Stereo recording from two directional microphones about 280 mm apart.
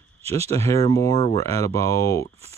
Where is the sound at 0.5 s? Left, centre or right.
Centre.